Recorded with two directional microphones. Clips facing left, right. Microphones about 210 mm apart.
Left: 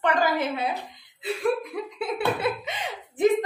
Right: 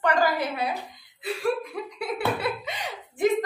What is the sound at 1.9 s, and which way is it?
Speech, 25° left (ahead or behind).